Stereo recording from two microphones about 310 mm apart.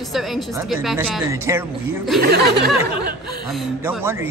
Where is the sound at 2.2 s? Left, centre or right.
Right.